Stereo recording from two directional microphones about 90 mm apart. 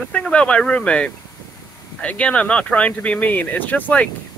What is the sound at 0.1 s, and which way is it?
Speech, 10° left (ahead or behind).